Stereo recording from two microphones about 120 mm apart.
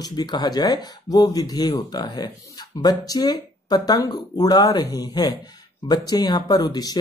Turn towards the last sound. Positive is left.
turn(degrees=30)  # may be behind; listen again after turning